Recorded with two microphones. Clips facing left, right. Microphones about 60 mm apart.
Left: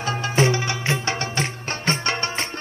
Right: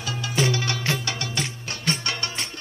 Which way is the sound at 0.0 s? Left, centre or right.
Left.